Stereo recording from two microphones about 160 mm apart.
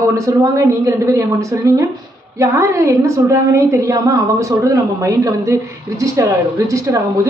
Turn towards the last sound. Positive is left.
turn(degrees=-20)  # may be behind; listen again after turning